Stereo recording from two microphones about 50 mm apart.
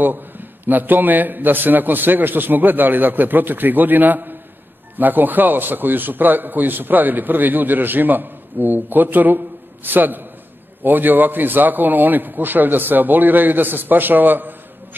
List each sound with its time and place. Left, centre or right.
0.0 s a man's voice: right